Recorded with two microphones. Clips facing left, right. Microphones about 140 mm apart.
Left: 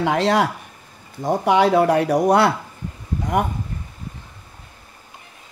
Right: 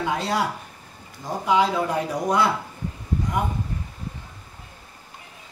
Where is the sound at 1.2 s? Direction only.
65° left (ahead or behind).